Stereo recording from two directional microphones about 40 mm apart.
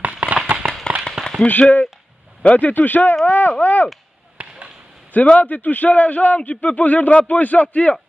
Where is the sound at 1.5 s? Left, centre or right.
Left.